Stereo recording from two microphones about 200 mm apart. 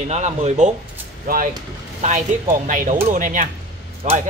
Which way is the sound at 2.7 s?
40° right (ahead or behind).